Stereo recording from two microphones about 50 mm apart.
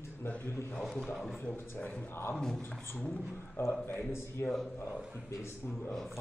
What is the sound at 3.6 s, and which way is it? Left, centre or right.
Speech, left.